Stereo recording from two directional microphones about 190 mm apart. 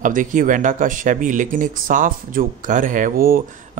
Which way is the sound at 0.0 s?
45° right (ahead or behind).